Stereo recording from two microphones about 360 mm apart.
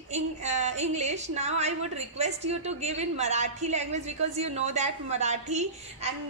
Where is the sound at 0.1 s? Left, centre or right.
Centre.